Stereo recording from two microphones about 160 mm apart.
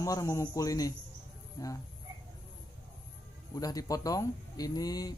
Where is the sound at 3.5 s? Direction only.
20° left (ahead or behind).